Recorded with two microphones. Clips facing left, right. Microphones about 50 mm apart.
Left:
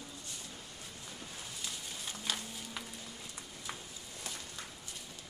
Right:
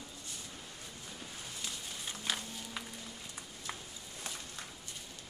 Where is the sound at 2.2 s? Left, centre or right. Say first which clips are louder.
Right 1 dB; centre.